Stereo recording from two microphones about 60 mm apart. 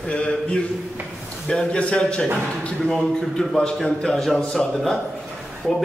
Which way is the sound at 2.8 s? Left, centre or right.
Centre.